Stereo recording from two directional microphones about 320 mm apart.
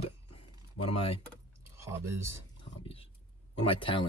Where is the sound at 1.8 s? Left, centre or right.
Centre.